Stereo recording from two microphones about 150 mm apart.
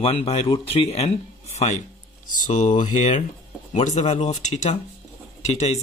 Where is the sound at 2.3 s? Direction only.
60° left (ahead or behind).